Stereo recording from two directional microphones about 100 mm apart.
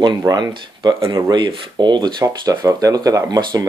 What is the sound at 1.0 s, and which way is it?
Speech, 30° right (ahead or behind).